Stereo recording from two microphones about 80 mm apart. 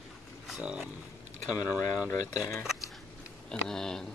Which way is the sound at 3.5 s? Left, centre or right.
Centre.